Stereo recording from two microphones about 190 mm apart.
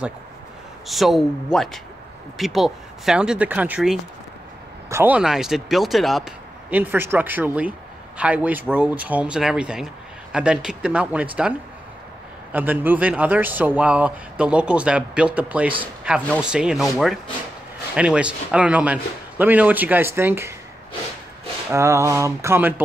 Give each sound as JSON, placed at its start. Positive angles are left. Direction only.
{"t": 0.8, "sound": "speech", "side_deg": 0}
{"t": 12.5, "sound": "speech", "side_deg": -10}
{"t": 21.6, "sound": "speech", "side_deg": -15}